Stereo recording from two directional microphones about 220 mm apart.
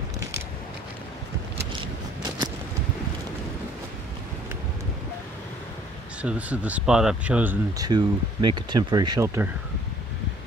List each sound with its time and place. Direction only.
6.2 s speech: 5° right (ahead or behind)